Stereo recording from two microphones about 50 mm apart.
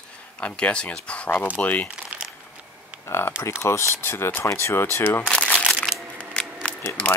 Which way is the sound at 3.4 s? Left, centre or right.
Left.